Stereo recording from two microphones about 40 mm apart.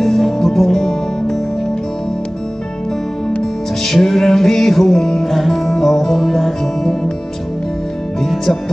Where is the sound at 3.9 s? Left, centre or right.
Centre.